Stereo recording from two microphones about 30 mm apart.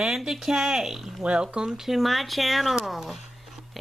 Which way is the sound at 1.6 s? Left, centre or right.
Right.